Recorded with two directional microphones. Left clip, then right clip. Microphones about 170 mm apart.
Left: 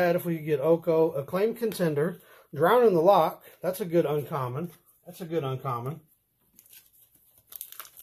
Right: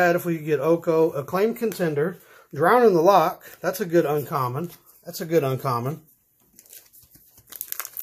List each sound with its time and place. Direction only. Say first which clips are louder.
0.0 s speech: right 5 dB; 5° right (ahead or behind)
1.7 s speech: right 3 dB; 10° left (ahead or behind)
2.5 s speech: right 4 dB; centre (ahead or behind)
5.2 s speech: right 9 dB; 65° right (ahead or behind)